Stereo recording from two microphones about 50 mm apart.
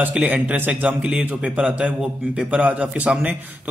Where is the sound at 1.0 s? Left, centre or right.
Right.